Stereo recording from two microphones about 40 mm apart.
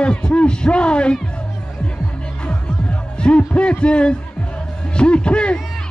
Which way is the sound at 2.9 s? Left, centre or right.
Left.